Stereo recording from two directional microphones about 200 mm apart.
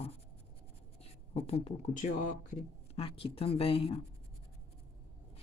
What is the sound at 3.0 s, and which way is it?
Speech, 30° left (ahead or behind).